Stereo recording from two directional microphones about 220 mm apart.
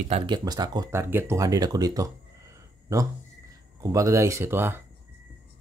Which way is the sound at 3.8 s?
15° right (ahead or behind).